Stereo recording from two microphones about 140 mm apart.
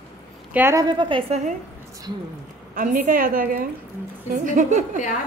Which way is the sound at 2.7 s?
80° right.